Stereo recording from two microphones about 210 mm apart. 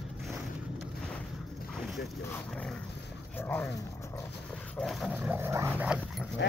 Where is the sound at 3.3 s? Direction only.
10° left (ahead or behind).